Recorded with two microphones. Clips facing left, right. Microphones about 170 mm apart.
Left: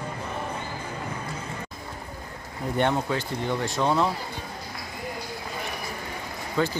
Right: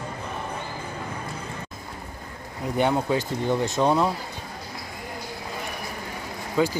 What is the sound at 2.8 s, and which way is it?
Speech, 10° right (ahead or behind).